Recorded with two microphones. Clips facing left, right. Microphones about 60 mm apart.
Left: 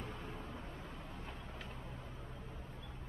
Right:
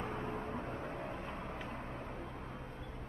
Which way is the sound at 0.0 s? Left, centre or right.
Right.